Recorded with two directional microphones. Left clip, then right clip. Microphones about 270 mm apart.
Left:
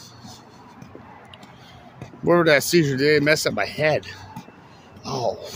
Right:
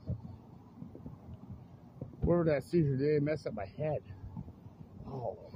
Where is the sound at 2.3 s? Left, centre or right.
Left.